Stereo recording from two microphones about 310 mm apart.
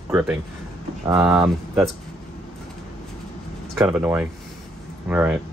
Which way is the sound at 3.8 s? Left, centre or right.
Centre.